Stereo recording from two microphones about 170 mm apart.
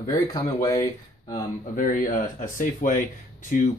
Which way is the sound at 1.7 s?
55° left (ahead or behind).